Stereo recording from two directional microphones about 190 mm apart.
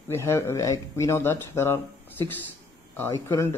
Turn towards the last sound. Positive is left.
turn(degrees=15)  # may be behind; listen again after turning